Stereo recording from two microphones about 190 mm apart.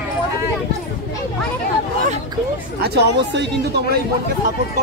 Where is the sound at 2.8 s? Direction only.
65° right (ahead or behind).